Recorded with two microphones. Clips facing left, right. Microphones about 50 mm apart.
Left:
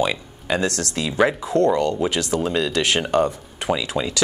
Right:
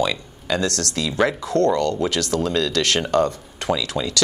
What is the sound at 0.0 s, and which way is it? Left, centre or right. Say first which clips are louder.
Speech: even; left.